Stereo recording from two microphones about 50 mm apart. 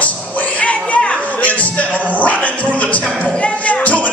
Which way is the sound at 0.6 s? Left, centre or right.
Left.